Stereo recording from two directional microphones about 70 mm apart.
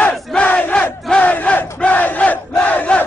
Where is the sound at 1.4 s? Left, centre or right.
Centre.